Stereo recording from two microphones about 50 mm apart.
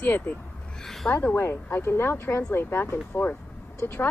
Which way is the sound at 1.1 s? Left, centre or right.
Left.